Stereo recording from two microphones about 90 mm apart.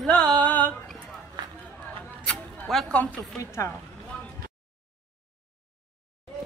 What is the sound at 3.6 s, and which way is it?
Speech, 35° left (ahead or behind).